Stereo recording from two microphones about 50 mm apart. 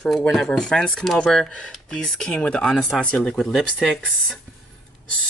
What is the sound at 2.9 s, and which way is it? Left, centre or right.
Speech, left.